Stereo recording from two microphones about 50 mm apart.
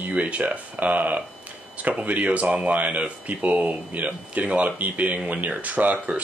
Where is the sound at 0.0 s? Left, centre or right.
Right.